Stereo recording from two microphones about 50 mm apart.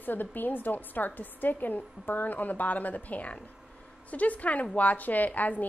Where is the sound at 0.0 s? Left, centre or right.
Left.